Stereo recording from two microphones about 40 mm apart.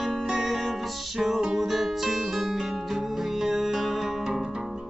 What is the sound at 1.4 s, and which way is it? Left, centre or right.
Music, centre.